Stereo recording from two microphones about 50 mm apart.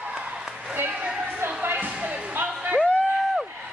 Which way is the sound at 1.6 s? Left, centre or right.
Right.